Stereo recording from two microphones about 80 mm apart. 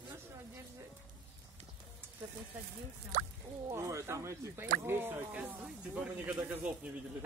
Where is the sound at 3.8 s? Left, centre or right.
Right.